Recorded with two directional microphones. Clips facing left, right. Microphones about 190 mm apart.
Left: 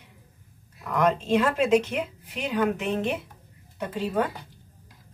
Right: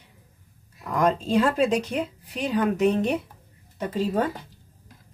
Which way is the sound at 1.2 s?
35° right (ahead or behind).